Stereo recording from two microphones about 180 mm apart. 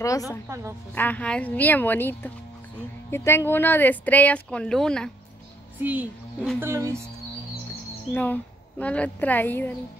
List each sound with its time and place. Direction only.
0.0 s a woman's voice: 20° left (ahead or behind)
5.8 s speech: 10° right (ahead or behind)
8.1 s speech: 10° left (ahead or behind)